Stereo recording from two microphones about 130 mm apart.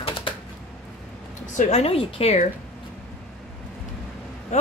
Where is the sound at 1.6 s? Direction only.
55° left (ahead or behind).